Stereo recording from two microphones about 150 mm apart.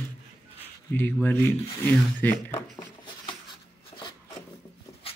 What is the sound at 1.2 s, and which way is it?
A man's voice, 15° left (ahead or behind).